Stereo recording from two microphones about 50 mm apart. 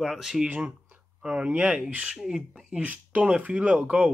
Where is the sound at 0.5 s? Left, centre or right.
Right.